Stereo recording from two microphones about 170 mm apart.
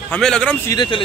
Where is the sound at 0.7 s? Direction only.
25° left (ahead or behind).